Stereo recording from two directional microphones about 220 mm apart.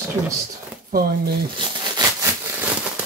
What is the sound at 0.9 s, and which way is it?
Speech, 45° right (ahead or behind).